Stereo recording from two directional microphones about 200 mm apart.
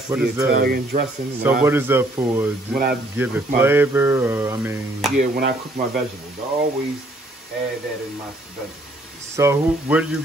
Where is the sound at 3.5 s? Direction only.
10° right (ahead or behind).